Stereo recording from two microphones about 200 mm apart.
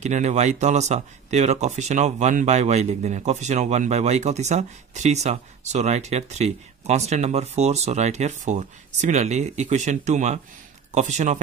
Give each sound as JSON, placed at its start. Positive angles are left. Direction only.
{"t": 0.0, "sound": "speech", "side_deg": -35}